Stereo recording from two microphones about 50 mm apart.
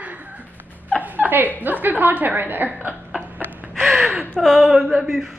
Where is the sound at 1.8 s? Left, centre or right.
Right.